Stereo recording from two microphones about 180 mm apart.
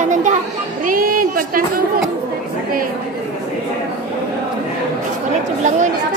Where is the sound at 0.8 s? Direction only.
50° right (ahead or behind).